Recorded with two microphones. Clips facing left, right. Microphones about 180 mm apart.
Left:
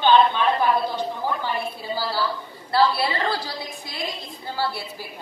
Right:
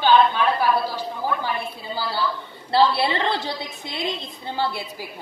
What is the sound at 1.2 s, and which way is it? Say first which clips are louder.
Speech: right 3 dB; 15° right (ahead or behind).